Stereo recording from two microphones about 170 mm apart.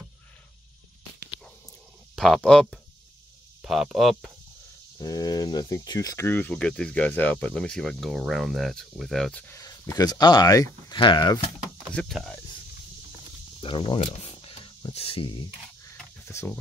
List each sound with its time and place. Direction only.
2.1 s speech: centre (ahead or behind)
4.9 s speech: 20° left (ahead or behind)
9.6 s speech: 20° left (ahead or behind)
11.9 s speech: 5° left (ahead or behind)
13.6 s a sound: 30° left (ahead or behind)
15.9 s a sound: 15° left (ahead or behind)